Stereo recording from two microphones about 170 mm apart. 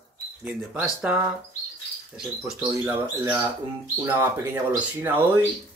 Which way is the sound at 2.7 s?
15° right (ahead or behind).